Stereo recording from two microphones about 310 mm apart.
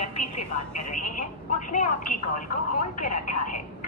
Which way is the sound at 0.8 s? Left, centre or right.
Left.